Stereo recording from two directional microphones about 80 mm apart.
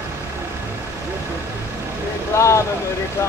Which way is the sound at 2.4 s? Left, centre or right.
Left.